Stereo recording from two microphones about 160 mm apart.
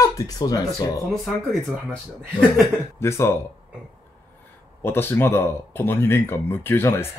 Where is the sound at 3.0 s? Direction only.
15° left (ahead or behind).